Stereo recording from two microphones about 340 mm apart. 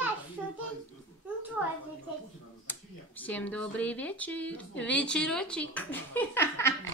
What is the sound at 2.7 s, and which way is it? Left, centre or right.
Speech, centre.